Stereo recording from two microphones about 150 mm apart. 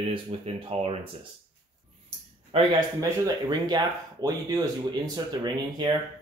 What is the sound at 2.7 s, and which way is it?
Speech, 25° right (ahead or behind).